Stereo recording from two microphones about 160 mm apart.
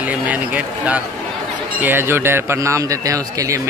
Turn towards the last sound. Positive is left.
turn(degrees=-20)  # may be behind; listen again after turning